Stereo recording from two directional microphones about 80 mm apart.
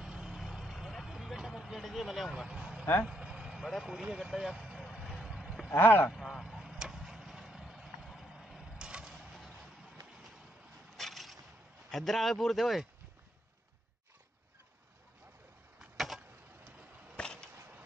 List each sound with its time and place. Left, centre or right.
0.0 s vehicle: centre
2.4 s speech: centre
2.8 s speech: left
3.1 s vehicle: centre
4.0 s speech: centre
4.8 s vehicle: centre
5.7 s speech: left
6.1 s vehicle: centre
11.0 s skateboard: centre
11.9 s speech: centre
15.8 s a sound: centre
17.2 s whip: centre
17.6 s mechanisms: right